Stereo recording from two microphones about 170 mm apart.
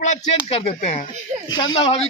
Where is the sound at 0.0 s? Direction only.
45° left (ahead or behind).